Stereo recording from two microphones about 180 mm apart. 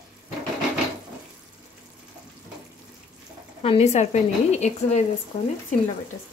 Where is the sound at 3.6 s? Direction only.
35° left (ahead or behind).